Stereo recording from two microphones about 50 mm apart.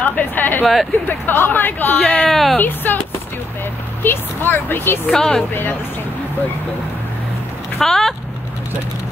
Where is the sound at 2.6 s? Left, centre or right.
Left.